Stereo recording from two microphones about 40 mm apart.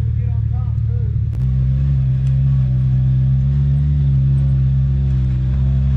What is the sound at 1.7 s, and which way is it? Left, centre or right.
Vehicle, centre.